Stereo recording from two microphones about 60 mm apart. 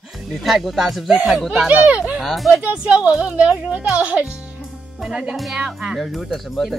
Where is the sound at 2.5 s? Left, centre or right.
Right.